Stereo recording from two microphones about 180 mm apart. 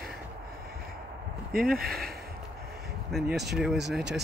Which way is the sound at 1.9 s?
60° right (ahead or behind).